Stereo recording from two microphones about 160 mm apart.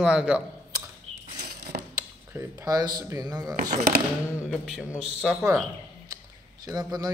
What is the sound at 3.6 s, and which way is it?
Speech, 55° right (ahead or behind).